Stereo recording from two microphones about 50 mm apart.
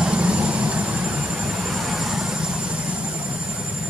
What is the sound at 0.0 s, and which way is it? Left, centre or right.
Vehicle, right.